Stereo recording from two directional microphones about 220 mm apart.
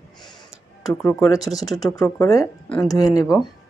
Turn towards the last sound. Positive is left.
turn(degrees=15)  # may be behind; listen again after turning